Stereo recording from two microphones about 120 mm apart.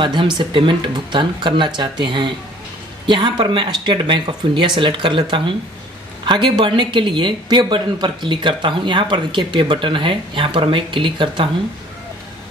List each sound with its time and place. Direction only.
0.0 s speech: 40° right (ahead or behind)